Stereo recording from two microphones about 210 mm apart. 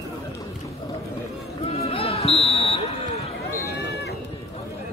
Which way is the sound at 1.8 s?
25° left (ahead or behind).